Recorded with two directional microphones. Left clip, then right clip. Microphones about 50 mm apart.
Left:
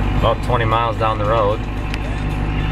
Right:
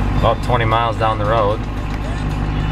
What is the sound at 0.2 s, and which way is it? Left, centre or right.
Speech, right.